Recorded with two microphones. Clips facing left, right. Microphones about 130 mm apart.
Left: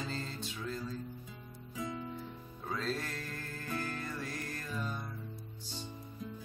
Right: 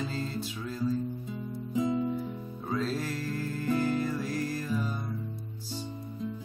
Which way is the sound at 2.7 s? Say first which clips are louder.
Right 7 dB; 5° right (ahead or behind).